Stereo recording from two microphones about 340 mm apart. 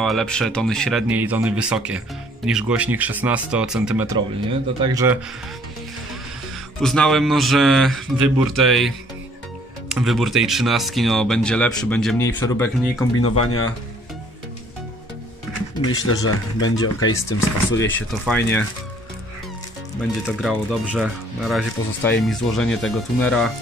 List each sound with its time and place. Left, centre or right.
0.0 s speech: centre
6.8 s speech: centre
9.9 s speech: centre
13.1 s speech: left
15.9 s speech: left
17.0 s speech: centre
20.2 s speech: centre